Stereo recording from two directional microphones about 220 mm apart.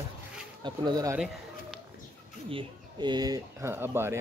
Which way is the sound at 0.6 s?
20° right (ahead or behind).